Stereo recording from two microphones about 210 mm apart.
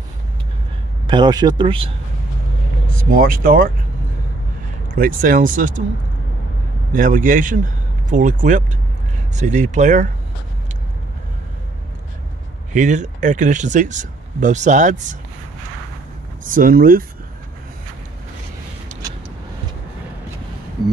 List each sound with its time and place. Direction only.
1.0 s speech: 20° right (ahead or behind)
2.9 s speech: 40° right (ahead or behind)
4.8 s speech: 40° right (ahead or behind)
6.9 s a man's voice: 40° right (ahead or behind)
12.7 s speech: 35° right (ahead or behind)
16.4 s speech: 40° right (ahead or behind)